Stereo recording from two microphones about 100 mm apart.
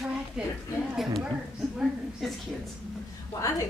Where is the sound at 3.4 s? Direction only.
30° left (ahead or behind).